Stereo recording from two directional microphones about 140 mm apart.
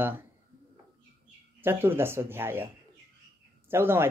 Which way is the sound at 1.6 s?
15° right (ahead or behind).